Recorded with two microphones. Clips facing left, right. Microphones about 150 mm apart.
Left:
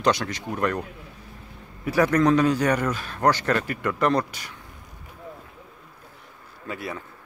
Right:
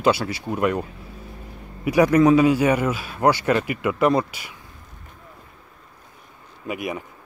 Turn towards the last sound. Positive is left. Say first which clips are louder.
# right 5 dB
turn(degrees=-15)  # may be behind; listen again after turning